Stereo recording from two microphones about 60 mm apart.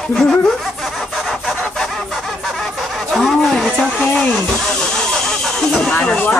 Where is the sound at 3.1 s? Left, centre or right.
Centre.